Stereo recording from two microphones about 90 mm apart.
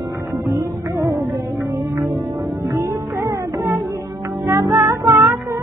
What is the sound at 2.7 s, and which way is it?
Music, 45° right (ahead or behind).